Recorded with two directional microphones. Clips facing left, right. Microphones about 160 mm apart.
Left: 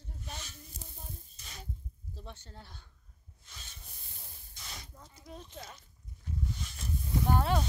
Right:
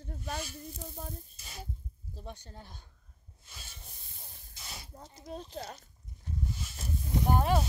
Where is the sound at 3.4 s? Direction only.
10° right (ahead or behind).